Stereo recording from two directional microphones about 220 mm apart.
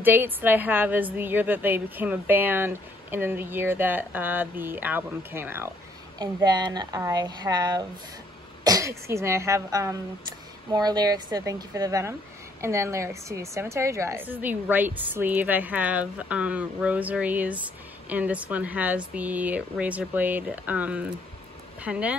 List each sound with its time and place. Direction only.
0.0 s a woman's voice: 10° right (ahead or behind)